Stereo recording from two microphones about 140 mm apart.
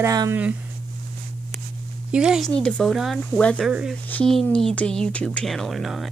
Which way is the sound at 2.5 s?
5° left (ahead or behind).